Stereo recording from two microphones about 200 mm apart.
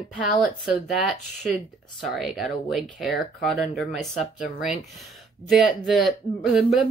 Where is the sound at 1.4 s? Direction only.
Centre (ahead or behind).